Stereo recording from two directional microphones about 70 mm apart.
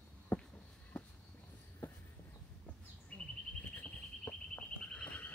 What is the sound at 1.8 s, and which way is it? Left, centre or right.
Walk, left.